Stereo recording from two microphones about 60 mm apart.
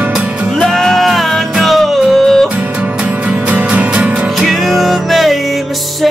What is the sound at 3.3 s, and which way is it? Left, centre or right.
Music, centre.